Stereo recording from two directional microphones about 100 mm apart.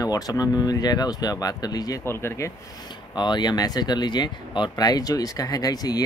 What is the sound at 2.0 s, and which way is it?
Speech, 25° left (ahead or behind).